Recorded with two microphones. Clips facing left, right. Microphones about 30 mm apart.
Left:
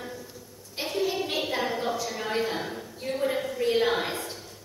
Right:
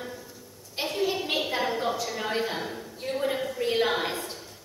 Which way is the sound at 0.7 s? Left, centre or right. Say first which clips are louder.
Even; centre.